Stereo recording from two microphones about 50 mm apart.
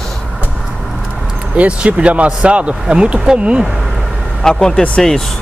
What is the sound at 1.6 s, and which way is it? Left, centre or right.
Speech, right.